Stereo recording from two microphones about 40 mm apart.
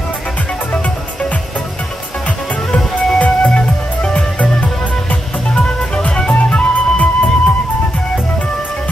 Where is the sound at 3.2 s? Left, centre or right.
Left.